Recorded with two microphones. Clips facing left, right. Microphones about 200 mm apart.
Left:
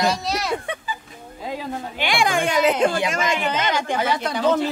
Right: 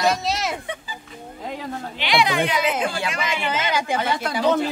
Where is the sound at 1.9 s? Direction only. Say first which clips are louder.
Right 1 dB; 50° left (ahead or behind).